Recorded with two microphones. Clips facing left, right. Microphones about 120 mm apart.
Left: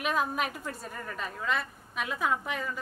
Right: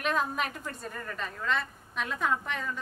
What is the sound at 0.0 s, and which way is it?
A woman's voice, 5° left (ahead or behind).